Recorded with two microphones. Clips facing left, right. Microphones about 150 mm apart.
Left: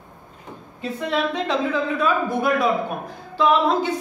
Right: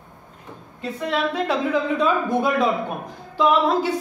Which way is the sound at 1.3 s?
10° right (ahead or behind).